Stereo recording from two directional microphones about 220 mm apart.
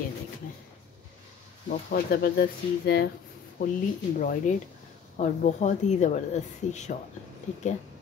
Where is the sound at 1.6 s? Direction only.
45° left (ahead or behind).